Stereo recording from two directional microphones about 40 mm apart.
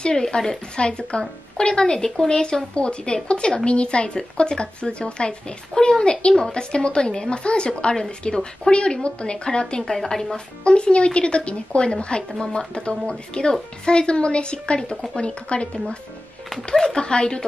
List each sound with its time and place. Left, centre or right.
0.0 s speech: centre
9.8 s speech: centre
10.3 s speech: left